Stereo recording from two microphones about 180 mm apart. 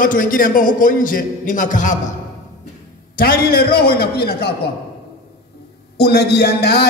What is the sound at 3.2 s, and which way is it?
A man's voice, 55° left (ahead or behind).